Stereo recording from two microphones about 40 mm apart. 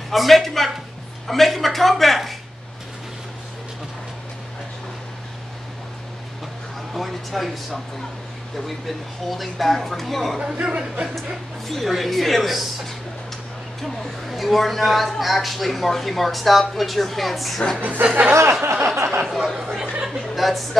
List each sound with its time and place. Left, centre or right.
0.1 s a woman's voice: centre
6.9 s a woman's voice: centre
10.4 s speech: right
11.6 s a woman's voice: centre
17.7 s speech: right
18.0 s speech: right
18.6 s a sound: right
19.2 s a woman's voice: centre
20.3 s a woman's voice: centre